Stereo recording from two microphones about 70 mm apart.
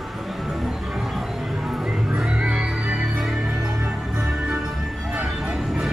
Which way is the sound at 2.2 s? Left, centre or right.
Centre.